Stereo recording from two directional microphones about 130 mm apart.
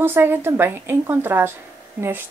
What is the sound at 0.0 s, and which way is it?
A woman's voice, 15° right (ahead or behind).